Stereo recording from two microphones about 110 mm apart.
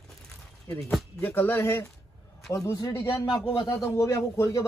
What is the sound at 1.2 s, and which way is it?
Speech, 15° left (ahead or behind).